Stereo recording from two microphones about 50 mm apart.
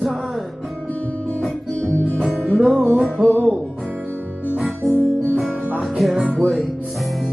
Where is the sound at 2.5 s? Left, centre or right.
Centre.